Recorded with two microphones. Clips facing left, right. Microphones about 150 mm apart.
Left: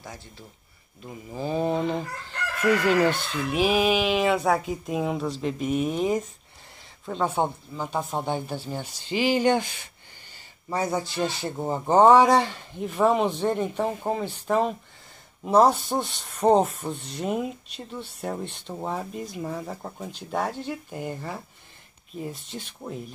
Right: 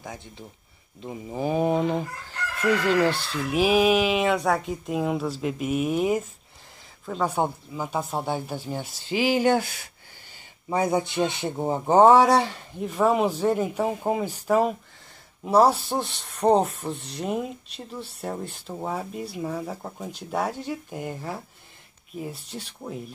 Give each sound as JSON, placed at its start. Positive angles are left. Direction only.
{"t": 0.0, "sound": "speech", "side_deg": -20}
{"t": 2.6, "sound": "speech", "side_deg": 5}
{"t": 3.1, "sound": "speech", "side_deg": -30}
{"t": 3.4, "sound": "speech", "side_deg": -5}